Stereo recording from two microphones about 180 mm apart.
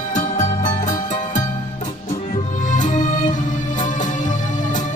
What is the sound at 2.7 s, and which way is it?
Music, 45° left (ahead or behind).